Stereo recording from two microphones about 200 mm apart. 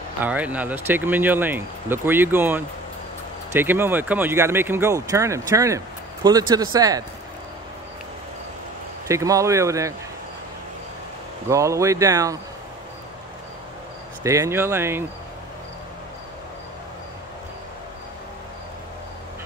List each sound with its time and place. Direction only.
0.2 s speech: 5° right (ahead or behind)
9.0 s speech: 15° right (ahead or behind)
11.4 s speech: 15° right (ahead or behind)
14.2 s speech: 15° right (ahead or behind)